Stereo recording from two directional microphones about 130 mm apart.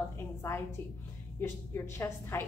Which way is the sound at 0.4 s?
20° left (ahead or behind).